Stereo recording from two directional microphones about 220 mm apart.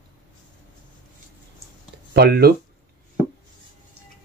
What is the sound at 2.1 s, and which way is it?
Speech, 50° right (ahead or behind).